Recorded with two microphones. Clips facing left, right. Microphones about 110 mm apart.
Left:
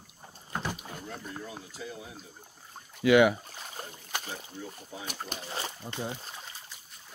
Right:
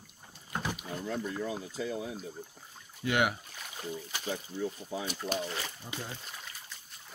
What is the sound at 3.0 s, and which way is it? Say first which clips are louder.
Speech: left 10 dB; 90° left.